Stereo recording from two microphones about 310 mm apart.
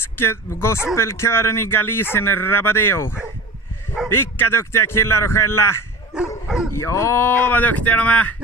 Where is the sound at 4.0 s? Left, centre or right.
Centre.